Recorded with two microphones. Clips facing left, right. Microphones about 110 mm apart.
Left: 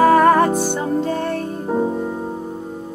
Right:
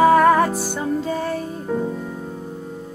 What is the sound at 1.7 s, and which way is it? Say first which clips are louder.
Music: left 4 dB; 30° left (ahead or behind).